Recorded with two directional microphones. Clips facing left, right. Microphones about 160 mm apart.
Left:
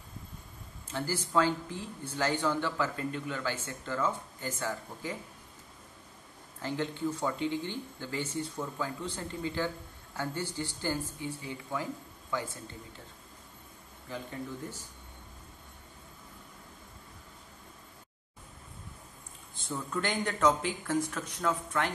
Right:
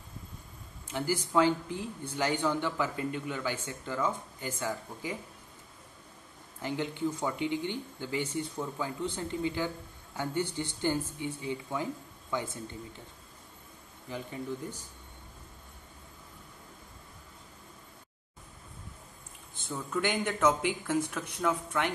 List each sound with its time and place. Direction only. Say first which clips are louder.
0.9 s speech: right 2 dB; 15° right (ahead or behind)
6.6 s speech: right 1 dB; 15° right (ahead or behind)
14.0 s speech: right 2 dB; 15° right (ahead or behind)
20.0 s speech: right 1 dB; 15° right (ahead or behind)